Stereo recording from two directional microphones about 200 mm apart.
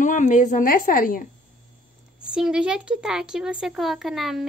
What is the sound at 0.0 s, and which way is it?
A woman's voice, 40° left (ahead or behind).